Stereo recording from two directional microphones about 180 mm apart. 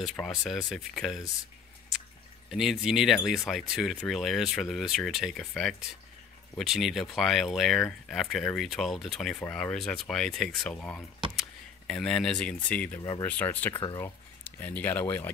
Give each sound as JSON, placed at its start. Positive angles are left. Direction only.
{"t": 0.0, "sound": "speech", "side_deg": 0}
{"t": 2.5, "sound": "speech", "side_deg": 0}
{"t": 13.7, "sound": "speech", "side_deg": 25}
{"t": 14.0, "sound": "speech", "side_deg": 10}